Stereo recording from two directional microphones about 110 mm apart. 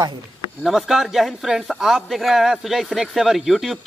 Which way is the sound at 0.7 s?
5° right (ahead or behind).